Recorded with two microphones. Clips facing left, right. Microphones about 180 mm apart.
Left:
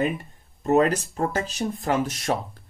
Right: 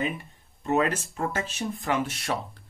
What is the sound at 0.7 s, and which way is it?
Speech, 40° left (ahead or behind).